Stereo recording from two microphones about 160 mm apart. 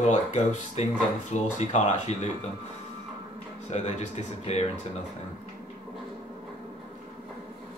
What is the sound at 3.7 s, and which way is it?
Speech, 45° left (ahead or behind).